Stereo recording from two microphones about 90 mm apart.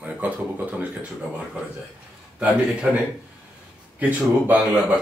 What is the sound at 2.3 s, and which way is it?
Speech, 10° right (ahead or behind).